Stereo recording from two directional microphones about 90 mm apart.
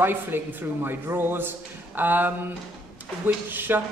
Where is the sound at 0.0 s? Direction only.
25° right (ahead or behind).